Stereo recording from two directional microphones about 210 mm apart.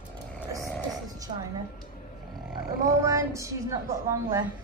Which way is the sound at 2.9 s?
15° right (ahead or behind).